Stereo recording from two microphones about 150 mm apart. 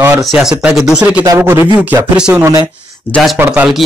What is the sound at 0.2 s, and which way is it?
Speech, centre (ahead or behind).